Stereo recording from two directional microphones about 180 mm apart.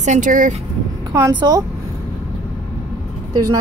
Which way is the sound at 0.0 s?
45° right (ahead or behind).